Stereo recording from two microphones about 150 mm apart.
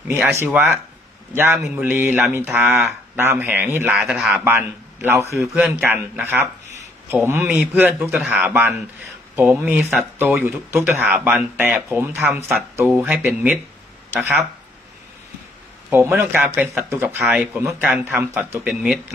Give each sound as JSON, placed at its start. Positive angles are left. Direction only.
{"t": 0.1, "sound": "speech", "side_deg": -15}
{"t": 4.5, "sound": "a man's voice", "side_deg": -15}
{"t": 5.5, "sound": "speech", "side_deg": -5}
{"t": 10.1, "sound": "speech", "side_deg": -15}
{"t": 15.9, "sound": "speech", "side_deg": -15}